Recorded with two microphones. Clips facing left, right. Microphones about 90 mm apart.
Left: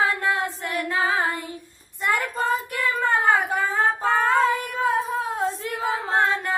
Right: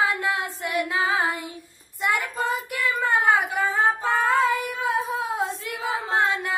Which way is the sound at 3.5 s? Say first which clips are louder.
Even; centre (ahead or behind).